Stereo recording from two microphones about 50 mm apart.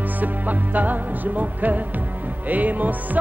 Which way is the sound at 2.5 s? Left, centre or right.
Right.